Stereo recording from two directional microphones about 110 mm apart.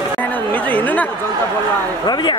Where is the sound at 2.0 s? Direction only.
40° left (ahead or behind).